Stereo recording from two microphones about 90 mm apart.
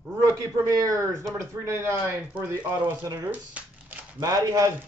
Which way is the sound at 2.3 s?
20° right (ahead or behind).